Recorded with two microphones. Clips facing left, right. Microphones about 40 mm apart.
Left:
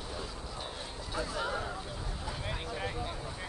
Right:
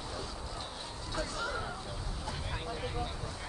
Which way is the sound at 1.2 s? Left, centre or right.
Centre.